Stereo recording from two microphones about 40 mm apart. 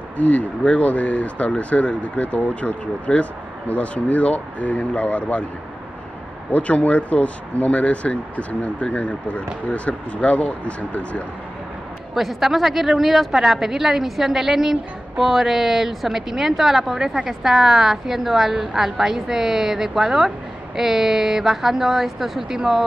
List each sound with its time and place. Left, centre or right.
0.2 s speech: left
3.1 s speech: left
3.6 s speech: left
6.5 s speech: left
12.1 s a woman's voice: centre